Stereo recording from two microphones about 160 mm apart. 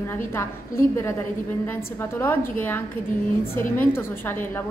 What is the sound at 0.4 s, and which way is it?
A woman's voice, 15° left (ahead or behind).